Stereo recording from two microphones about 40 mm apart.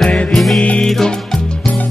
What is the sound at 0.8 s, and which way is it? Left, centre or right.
Music, centre.